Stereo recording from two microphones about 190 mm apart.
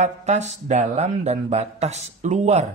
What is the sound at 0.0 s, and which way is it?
Speech, 35° right (ahead or behind).